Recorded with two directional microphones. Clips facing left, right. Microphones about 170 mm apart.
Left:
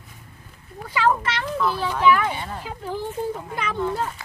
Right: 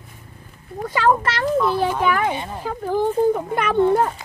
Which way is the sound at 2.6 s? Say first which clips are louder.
Right 8 dB; 50° right (ahead or behind).